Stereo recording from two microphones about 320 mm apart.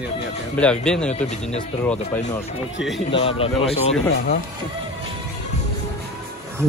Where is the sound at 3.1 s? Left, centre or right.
Centre.